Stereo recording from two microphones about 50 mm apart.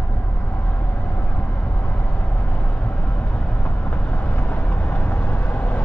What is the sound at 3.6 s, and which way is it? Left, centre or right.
Vehicle, left.